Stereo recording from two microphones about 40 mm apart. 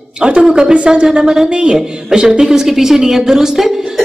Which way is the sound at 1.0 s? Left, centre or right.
Centre.